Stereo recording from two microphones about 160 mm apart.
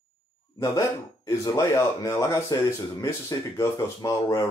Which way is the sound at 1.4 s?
20° left (ahead or behind).